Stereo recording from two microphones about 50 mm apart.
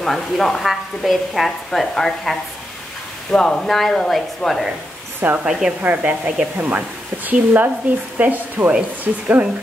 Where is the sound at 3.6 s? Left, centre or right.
Centre.